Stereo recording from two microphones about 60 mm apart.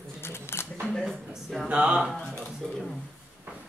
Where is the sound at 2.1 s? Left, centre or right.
Centre.